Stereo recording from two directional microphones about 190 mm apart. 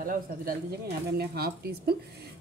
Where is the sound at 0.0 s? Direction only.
45° right (ahead or behind).